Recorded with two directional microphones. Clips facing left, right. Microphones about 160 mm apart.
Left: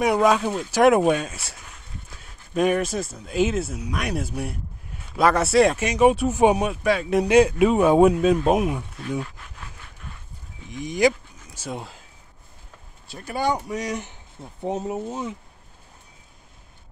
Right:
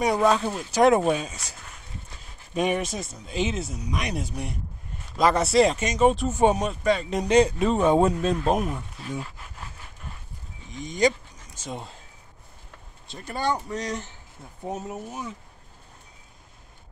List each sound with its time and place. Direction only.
0.0 s speech: 10° left (ahead or behind)
10.7 s speech: 10° left (ahead or behind)
13.1 s speech: 5° left (ahead or behind)
14.6 s speech: 30° left (ahead or behind)